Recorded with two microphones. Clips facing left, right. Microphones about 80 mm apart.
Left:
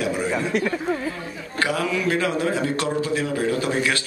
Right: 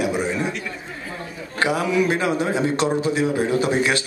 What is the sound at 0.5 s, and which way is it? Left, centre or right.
Speech, left.